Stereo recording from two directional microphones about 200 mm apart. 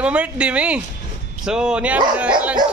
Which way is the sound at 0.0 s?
5° right (ahead or behind).